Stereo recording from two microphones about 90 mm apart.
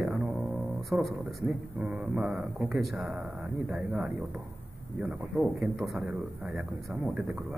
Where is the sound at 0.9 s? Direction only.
10° right (ahead or behind).